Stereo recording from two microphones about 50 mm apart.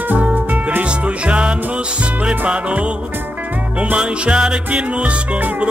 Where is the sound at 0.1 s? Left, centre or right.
Right.